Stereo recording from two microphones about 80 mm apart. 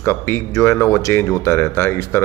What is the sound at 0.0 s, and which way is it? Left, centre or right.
Speech, left.